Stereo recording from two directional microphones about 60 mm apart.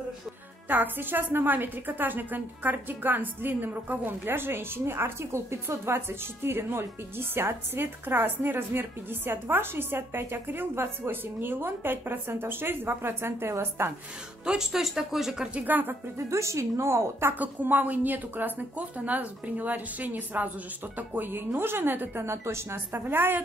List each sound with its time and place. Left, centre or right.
0.7 s a woman's voice: right
14.4 s speech: centre
15.5 s a woman's voice: right
16.3 s a woman's voice: right
17.4 s a woman's voice: right
22.9 s a woman's voice: right